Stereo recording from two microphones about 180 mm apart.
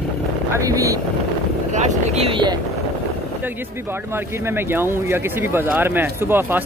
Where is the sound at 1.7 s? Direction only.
40° right (ahead or behind).